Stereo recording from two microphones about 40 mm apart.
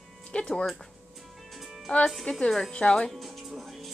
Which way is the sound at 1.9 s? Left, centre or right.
Left.